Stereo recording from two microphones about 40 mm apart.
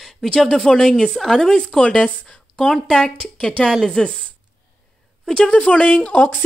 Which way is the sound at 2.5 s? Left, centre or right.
Centre.